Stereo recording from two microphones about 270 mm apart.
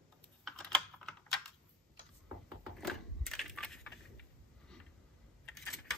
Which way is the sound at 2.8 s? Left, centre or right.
Centre.